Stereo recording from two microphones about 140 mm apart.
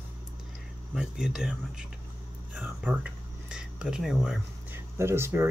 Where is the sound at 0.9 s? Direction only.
5° right (ahead or behind).